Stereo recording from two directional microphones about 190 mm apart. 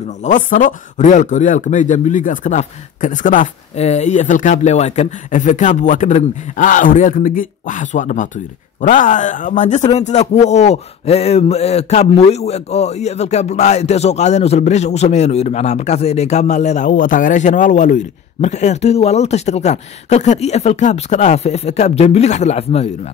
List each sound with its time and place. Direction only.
0.2 s speech: 40° left (ahead or behind)